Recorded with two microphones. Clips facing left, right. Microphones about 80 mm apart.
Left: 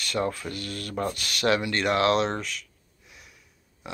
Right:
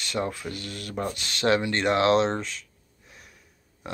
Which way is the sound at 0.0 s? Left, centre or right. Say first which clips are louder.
Left 1 dB; right.